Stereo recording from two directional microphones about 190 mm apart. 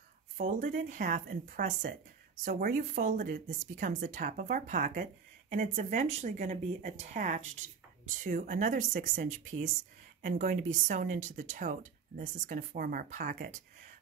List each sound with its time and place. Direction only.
0.4 s speech: 40° right (ahead or behind)